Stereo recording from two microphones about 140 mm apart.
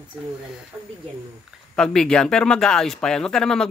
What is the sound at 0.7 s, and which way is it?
Speech, 15° right (ahead or behind).